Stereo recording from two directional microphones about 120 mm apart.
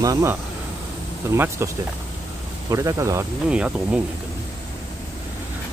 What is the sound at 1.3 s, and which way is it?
Speech, 25° right (ahead or behind).